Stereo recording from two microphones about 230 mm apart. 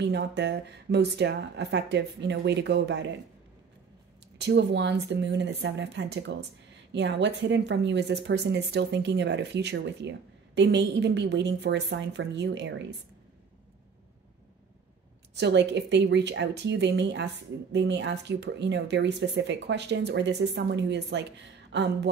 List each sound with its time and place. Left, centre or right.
0.0 s a woman's voice: right
4.4 s a woman's voice: right
15.3 s a woman's voice: right